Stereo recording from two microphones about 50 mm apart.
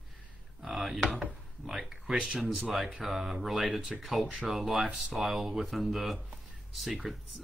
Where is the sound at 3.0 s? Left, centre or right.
Centre.